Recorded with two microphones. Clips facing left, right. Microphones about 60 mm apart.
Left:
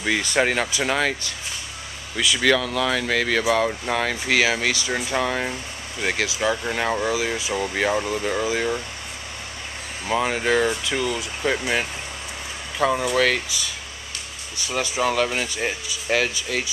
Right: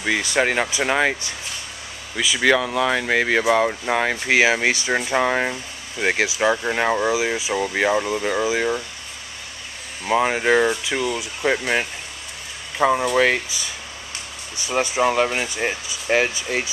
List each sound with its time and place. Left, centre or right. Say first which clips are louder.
0.0 s speech: right 1 dB; centre
10.0 s speech: right 3 dB; centre
14.7 s speech: right 3 dB; right